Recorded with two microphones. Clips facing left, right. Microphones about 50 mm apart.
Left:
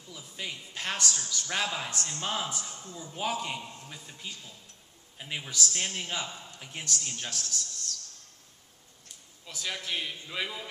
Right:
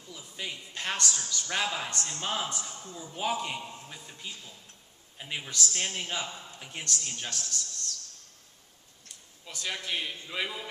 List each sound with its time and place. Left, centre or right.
0.1 s a man's voice: centre
3.6 s a sound: centre
3.9 s a man's voice: centre
9.5 s a man's voice: centre